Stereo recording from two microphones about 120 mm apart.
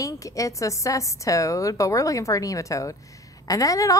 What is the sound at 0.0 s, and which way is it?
A woman's voice, 30° left (ahead or behind).